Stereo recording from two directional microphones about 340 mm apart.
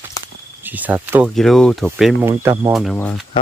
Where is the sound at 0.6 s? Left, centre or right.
Centre.